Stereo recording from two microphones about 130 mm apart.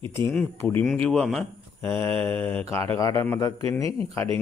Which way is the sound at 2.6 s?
20° left (ahead or behind).